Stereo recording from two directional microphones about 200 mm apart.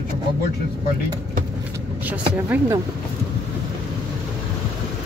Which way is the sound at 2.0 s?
10° right (ahead or behind).